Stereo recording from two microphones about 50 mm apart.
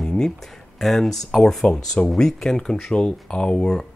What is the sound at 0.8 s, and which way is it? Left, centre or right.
Speech, centre.